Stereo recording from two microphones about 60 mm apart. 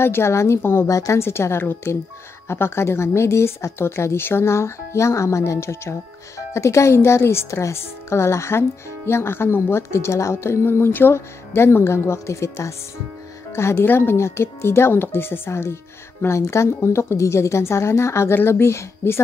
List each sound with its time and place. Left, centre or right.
0.0 s a woman's voice: left
0.6 s speech: left
0.8 s speech: left
1.2 s a woman's voice: left